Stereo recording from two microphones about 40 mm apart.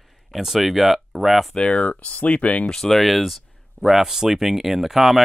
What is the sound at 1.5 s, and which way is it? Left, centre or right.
Speech, left.